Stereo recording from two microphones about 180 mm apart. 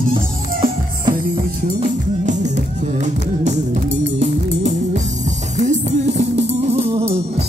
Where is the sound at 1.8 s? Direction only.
40° right (ahead or behind).